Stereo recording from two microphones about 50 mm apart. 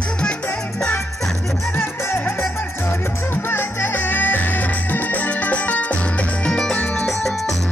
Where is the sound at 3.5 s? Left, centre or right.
Left.